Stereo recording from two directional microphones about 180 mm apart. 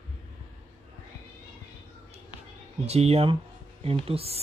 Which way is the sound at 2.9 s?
35° right (ahead or behind).